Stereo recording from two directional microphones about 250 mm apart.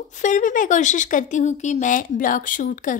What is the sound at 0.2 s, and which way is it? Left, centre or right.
A woman's voice, left.